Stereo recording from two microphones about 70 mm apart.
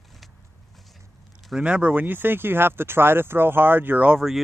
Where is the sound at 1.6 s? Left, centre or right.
Centre.